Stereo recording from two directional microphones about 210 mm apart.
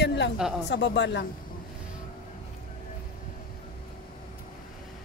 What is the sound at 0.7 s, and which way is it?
Speech, 55° left (ahead or behind).